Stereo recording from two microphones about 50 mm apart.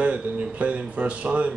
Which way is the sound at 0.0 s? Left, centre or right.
Right.